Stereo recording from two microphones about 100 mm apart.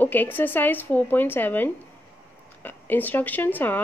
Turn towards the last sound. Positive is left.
turn(degrees=20)  # may be behind; listen again after turning